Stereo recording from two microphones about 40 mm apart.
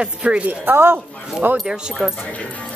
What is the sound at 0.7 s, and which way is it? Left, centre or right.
Speech, right.